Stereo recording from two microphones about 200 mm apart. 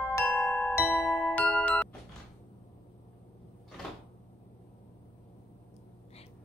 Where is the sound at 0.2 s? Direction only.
Centre (ahead or behind).